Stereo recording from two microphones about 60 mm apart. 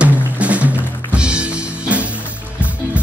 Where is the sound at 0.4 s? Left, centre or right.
Right.